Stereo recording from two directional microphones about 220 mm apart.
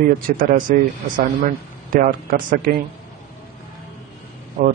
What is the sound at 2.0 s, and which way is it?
Speech, 40° right (ahead or behind).